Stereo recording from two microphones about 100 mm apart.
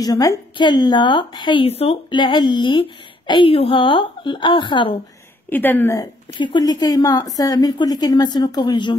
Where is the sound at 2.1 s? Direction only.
50° left (ahead or behind).